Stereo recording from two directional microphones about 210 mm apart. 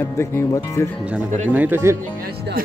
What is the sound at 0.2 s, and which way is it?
Speech, 10° left (ahead or behind).